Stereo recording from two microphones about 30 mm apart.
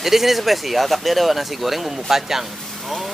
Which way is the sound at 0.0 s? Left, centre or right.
Centre.